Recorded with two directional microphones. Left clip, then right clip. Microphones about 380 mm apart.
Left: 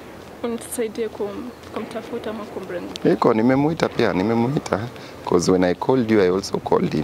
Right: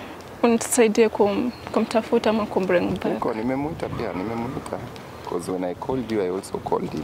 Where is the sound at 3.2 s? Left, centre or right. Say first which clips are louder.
Left 8 dB; left.